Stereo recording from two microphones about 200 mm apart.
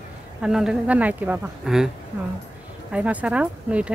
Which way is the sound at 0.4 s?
5° right (ahead or behind).